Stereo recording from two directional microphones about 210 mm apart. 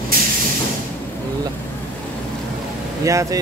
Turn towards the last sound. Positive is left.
turn(degrees=-15)  # may be behind; listen again after turning